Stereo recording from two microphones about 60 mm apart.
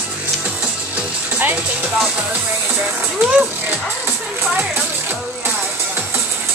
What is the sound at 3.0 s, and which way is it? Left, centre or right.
Music, right.